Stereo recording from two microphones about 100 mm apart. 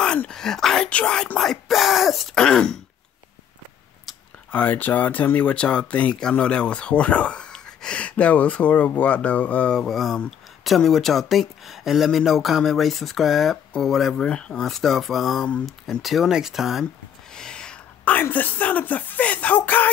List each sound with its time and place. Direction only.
0.0 s speech: 10° left (ahead or behind)
4.5 s a woman's voice: 15° left (ahead or behind)